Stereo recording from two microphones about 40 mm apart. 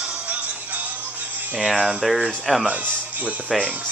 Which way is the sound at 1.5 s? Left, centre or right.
Centre.